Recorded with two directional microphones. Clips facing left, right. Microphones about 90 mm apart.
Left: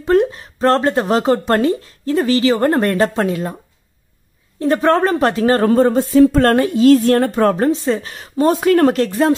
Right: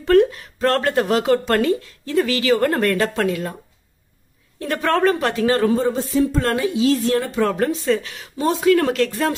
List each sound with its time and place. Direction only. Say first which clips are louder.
0.0 s speech: even; 25° left (ahead or behind)
4.6 s speech: left 5 dB; 25° left (ahead or behind); by 7.5 s 50° left (ahead or behind)
7.5 s speech: left 3 dB; 30° left (ahead or behind)